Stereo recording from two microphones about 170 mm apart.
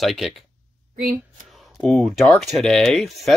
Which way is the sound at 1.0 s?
55° right (ahead or behind).